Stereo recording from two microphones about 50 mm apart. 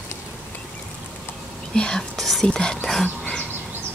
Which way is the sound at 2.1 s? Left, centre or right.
Centre.